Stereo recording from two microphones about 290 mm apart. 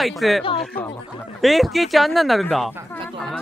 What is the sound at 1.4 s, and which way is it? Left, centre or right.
Speech, centre.